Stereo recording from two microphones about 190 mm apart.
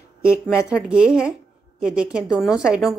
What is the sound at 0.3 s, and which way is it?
A woman's voice, 5° right (ahead or behind).